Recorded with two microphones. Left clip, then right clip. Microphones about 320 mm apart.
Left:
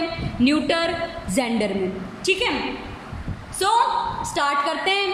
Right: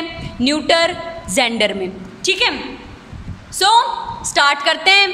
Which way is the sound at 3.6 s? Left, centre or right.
Right.